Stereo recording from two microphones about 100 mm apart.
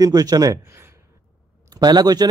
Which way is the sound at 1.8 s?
45° right (ahead or behind).